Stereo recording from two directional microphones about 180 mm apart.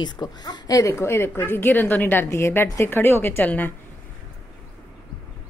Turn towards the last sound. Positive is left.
turn(degrees=10)  # may be behind; listen again after turning